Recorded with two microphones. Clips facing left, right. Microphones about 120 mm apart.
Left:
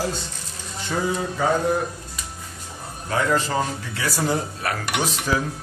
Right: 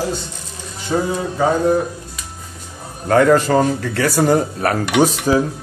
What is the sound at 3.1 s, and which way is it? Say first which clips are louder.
Speech: right 10 dB; 60° right (ahead or behind).